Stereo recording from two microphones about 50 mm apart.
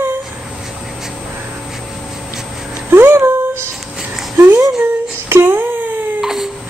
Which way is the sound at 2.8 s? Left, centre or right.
Right.